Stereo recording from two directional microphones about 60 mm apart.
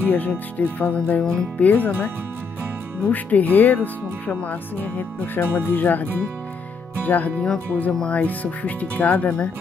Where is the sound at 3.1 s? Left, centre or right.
Left; by 8.2 s centre.